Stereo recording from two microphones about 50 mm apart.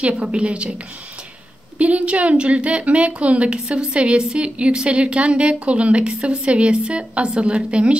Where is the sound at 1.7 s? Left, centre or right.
Right.